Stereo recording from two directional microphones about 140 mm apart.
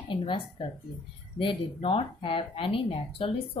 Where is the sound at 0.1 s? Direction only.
40° left (ahead or behind).